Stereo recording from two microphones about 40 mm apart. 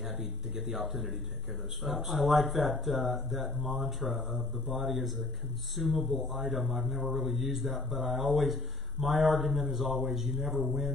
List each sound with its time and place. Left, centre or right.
0.0 s speech: centre